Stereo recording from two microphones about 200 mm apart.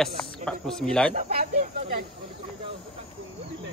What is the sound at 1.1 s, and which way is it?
Snake, 40° right (ahead or behind).